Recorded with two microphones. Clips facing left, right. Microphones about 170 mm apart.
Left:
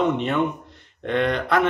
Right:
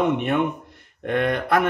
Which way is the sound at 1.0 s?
50° right (ahead or behind).